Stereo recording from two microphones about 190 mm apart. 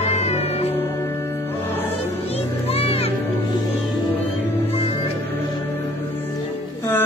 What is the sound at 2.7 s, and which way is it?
Music, 30° left (ahead or behind).